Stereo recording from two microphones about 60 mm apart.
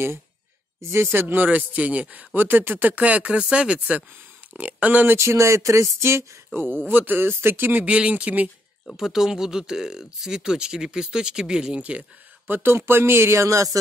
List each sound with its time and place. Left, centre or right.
1.1 s speech: right
3.0 s speech: right
5.0 s speech: right
6.5 s speech: right
8.9 s speech: centre; by 12.1 s right
12.4 s speech: right
13.4 s a sound: right